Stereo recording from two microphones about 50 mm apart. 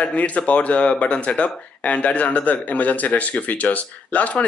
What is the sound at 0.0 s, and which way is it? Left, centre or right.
Speech, left.